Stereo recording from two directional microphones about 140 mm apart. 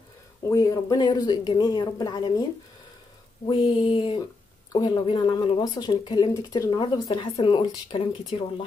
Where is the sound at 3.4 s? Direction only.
35° left (ahead or behind).